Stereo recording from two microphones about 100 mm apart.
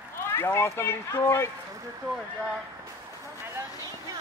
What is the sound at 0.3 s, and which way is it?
Speech, 25° left (ahead or behind).